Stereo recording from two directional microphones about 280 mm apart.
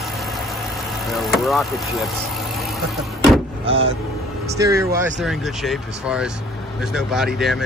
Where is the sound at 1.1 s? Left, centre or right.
Centre.